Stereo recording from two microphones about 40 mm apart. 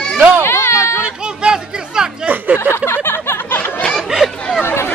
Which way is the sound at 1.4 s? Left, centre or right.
Right.